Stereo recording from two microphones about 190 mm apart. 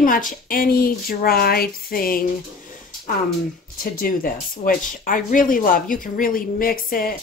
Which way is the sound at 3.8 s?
50° left (ahead or behind).